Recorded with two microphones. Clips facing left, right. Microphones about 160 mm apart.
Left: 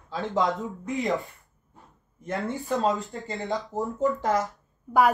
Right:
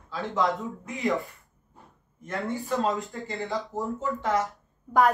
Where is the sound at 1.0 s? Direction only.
20° left (ahead or behind).